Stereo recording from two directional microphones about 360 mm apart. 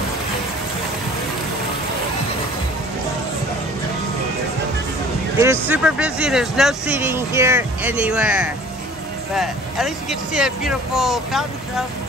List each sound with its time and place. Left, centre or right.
5.4 s speech: centre